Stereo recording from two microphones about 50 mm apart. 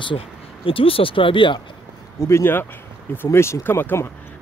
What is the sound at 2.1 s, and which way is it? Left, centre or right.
Speech, left.